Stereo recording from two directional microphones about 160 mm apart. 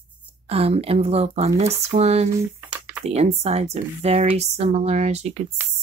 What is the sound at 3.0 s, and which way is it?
Speech, 40° right (ahead or behind).